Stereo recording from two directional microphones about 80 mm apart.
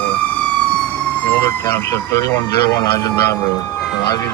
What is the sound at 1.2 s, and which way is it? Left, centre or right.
Emergency vehicle, left.